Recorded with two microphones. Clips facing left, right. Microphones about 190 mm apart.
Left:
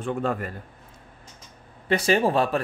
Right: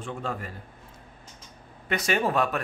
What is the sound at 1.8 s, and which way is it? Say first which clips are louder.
Speech: left 5 dB; 30° left (ahead or behind).